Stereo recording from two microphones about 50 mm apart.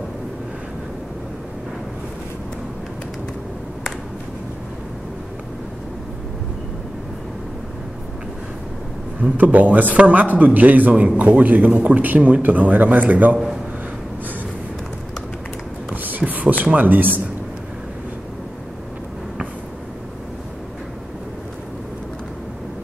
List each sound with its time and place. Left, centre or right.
9.2 s a man's voice: right
15.9 s a sound: right
16.7 s a man's voice: right